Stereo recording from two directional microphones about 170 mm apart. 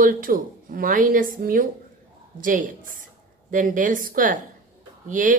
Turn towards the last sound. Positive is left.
turn(degrees=-50)  # may be behind; listen again after turning